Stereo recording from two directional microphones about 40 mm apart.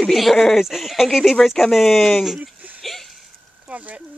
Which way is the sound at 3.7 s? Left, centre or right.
Right.